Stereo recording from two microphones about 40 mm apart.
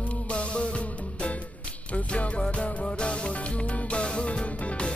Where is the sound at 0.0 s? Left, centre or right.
Left.